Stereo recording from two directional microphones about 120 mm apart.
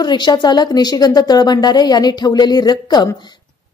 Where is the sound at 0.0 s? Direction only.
40° left (ahead or behind).